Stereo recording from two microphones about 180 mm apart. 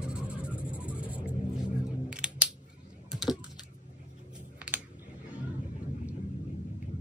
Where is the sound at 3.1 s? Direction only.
Centre (ahead or behind).